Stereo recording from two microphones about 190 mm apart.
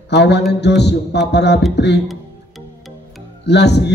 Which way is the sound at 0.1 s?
65° left (ahead or behind).